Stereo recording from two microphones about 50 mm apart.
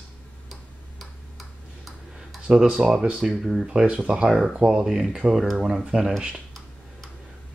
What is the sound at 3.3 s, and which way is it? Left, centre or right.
Speech, centre.